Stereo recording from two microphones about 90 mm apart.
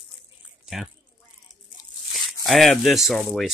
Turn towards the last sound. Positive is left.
turn(degrees=0)  # may be behind; listen again after turning